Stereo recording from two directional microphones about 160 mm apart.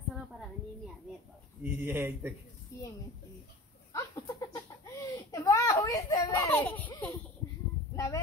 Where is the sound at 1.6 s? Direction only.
10° right (ahead or behind).